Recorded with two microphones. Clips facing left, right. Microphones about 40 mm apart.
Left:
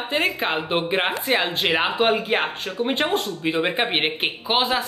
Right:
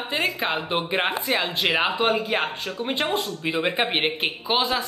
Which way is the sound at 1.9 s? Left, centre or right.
Centre.